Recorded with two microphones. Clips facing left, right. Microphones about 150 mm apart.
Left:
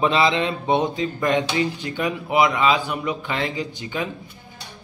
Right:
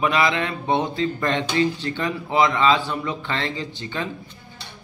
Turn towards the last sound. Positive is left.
turn(degrees=15)  # may be behind; listen again after turning